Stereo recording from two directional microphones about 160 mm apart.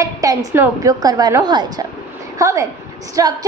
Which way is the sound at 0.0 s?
20° right (ahead or behind).